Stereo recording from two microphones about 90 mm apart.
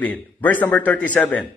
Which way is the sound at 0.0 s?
15° left (ahead or behind).